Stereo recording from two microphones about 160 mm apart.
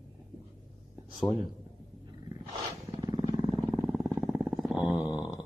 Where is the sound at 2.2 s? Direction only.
25° right (ahead or behind).